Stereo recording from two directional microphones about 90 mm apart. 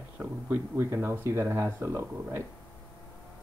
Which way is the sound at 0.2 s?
20° right (ahead or behind).